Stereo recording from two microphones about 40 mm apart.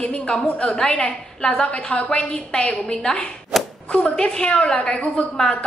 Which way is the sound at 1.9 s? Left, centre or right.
Left.